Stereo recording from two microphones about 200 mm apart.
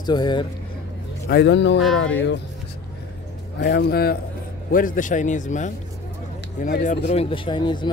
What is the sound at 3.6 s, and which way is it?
A man's voice, 55° left (ahead or behind).